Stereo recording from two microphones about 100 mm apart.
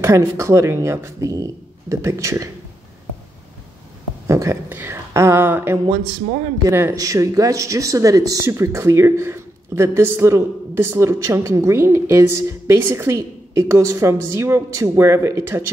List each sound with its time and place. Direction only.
0.0 s speech: 30° right (ahead or behind)
4.3 s speech: 30° right (ahead or behind)
7.0 s speech: 35° right (ahead or behind)